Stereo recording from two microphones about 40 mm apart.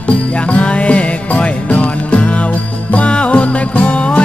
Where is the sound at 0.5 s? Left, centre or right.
Left.